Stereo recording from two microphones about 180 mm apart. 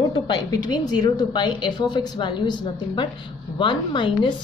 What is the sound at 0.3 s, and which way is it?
A woman's voice, 25° left (ahead or behind).